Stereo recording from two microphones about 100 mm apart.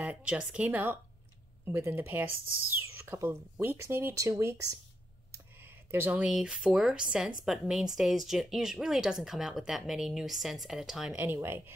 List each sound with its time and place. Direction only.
0.0 s a woman's voice: 15° right (ahead or behind)
1.7 s a woman's voice: 30° right (ahead or behind)
2.0 s speech: 20° right (ahead or behind)
5.9 s speech: 20° right (ahead or behind)
6.2 s speech: 5° right (ahead or behind)
11.3 s speech: 25° right (ahead or behind)